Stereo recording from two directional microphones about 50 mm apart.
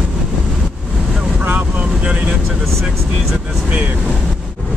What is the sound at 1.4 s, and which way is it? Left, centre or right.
Vehicle, right.